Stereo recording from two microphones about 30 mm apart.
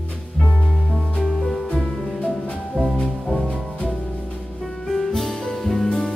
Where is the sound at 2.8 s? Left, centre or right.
Left.